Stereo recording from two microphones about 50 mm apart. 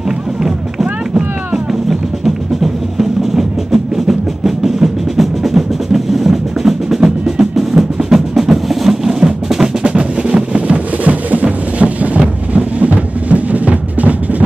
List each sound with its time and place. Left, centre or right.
0.4 s music: centre
9.8 s music: centre